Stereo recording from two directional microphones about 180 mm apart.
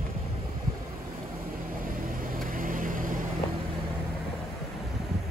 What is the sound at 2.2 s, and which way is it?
Vehicle, 50° right (ahead or behind).